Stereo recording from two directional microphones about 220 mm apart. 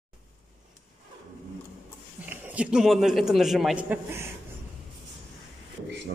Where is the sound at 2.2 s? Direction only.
10° right (ahead or behind).